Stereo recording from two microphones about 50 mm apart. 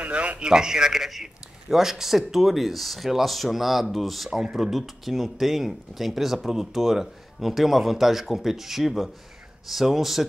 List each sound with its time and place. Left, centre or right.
0.0 s a sound: right
0.5 s speech: centre
4.3 s speech: centre